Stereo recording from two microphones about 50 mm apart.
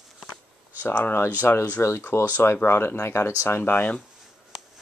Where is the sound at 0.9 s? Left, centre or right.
Left.